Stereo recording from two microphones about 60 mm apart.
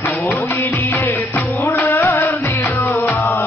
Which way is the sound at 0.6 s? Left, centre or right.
Left.